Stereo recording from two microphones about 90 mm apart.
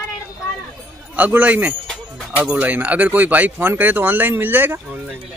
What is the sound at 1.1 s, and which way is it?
Speech, 20° right (ahead or behind).